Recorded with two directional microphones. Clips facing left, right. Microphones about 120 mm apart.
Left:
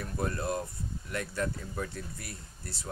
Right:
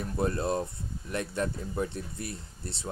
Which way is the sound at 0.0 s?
25° right (ahead or behind).